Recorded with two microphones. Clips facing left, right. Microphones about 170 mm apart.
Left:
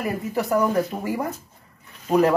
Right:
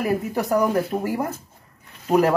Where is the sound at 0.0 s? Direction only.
Centre (ahead or behind).